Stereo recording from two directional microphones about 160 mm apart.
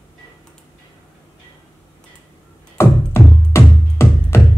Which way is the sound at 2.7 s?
15° left (ahead or behind).